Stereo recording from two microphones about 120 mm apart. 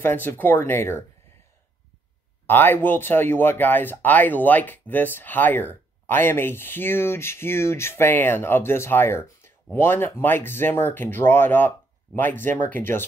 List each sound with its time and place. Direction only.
0.0 s speech: 20° left (ahead or behind)
2.4 s speech: 15° left (ahead or behind)